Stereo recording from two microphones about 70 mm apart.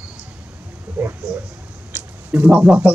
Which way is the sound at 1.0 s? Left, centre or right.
Right.